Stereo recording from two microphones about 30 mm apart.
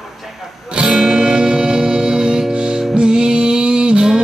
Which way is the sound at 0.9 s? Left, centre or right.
Centre.